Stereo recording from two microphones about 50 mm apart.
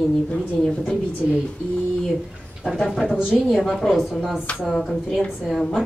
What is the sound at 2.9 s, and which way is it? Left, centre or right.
Speech, centre.